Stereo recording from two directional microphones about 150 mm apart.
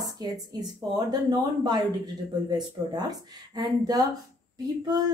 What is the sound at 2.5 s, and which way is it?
Speech, 25° right (ahead or behind).